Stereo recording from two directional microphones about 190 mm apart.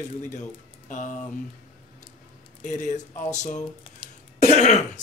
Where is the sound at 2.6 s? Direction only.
40° left (ahead or behind).